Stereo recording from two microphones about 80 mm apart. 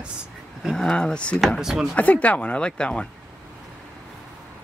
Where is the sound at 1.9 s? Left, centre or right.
Centre.